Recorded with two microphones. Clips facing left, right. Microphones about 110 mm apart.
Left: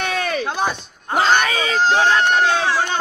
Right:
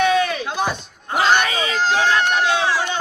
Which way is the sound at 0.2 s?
50° left (ahead or behind).